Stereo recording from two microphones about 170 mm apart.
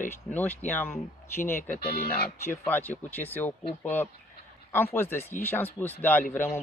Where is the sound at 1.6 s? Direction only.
60° left (ahead or behind).